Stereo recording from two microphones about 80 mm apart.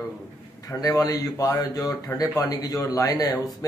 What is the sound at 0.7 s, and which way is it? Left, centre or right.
Speech, left.